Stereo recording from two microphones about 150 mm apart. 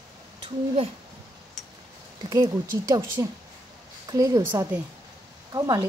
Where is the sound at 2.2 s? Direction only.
20° right (ahead or behind).